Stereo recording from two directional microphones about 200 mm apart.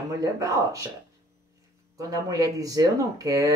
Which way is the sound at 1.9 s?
15° right (ahead or behind).